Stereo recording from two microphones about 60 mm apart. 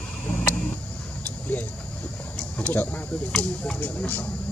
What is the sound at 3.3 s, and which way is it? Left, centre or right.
Speech, centre.